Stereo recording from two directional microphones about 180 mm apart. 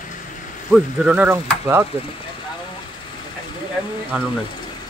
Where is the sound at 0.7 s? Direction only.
5° right (ahead or behind).